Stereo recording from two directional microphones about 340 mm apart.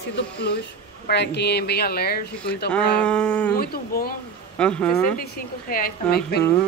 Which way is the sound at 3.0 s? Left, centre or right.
Centre.